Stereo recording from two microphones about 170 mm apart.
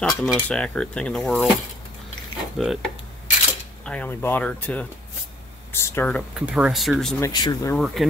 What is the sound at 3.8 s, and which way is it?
Speech, 10° left (ahead or behind).